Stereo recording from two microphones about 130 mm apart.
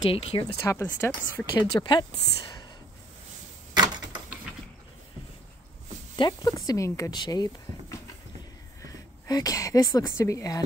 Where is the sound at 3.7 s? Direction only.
35° right (ahead or behind).